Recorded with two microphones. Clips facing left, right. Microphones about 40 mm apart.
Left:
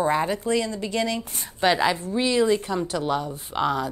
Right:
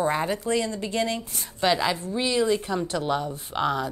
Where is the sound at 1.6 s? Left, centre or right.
Centre.